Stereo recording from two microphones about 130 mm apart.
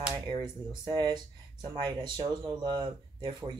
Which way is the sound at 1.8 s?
35° right (ahead or behind).